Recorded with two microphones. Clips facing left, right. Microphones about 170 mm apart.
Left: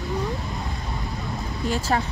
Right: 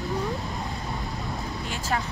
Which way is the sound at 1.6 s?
40° left (ahead or behind).